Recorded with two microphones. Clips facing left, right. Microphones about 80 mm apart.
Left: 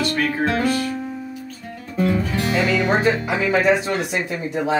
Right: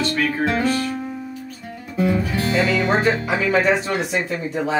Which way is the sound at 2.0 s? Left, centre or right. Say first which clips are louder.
Even; centre.